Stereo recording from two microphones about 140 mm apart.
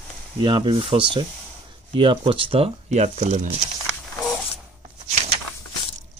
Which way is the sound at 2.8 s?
55° right (ahead or behind).